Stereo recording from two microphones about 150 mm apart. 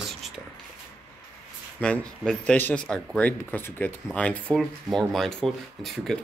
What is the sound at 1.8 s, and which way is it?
Speech, 10° left (ahead or behind).